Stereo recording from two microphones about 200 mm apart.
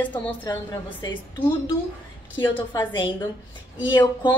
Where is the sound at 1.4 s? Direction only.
25° left (ahead or behind).